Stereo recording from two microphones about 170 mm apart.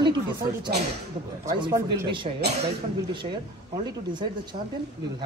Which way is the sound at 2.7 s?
30° right (ahead or behind).